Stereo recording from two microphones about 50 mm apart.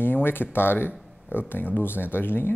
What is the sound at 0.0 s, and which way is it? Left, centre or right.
Speech, left.